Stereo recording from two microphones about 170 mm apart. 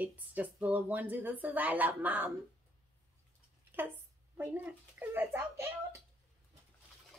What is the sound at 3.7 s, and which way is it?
A woman's voice, 10° right (ahead or behind).